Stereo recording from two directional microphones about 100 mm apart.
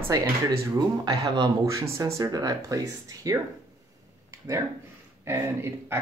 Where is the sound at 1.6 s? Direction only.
30° right (ahead or behind).